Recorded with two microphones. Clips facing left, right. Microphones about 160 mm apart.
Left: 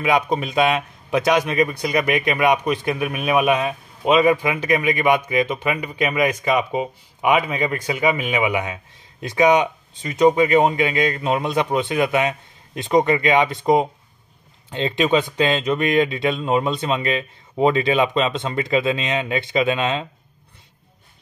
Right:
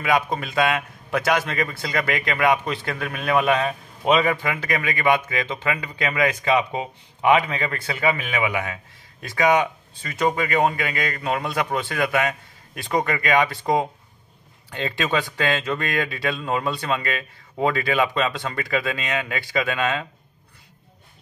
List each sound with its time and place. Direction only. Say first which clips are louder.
0.0 s a man's voice: left 3 dB; 20° left (ahead or behind)